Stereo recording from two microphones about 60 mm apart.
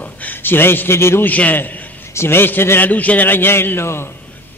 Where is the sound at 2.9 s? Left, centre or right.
Left.